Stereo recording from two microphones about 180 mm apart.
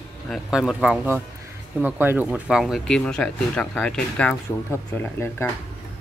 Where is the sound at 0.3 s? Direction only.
5° right (ahead or behind).